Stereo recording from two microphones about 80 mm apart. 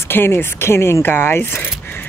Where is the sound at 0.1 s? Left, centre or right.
Left.